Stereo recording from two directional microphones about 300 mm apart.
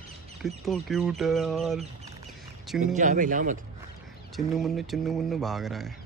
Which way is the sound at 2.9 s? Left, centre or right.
Right.